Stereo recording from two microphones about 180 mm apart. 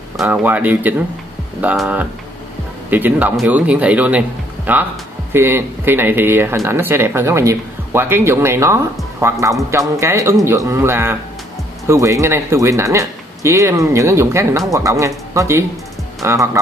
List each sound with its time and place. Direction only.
0.2 s speech: 10° right (ahead or behind)